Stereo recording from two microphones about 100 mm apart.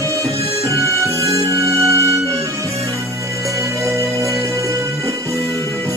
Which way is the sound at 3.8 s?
30° right (ahead or behind).